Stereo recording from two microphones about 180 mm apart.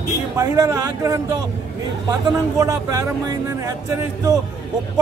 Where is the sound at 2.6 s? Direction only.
15° right (ahead or behind).